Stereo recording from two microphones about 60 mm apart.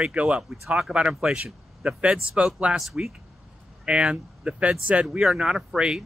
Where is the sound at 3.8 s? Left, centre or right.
Centre.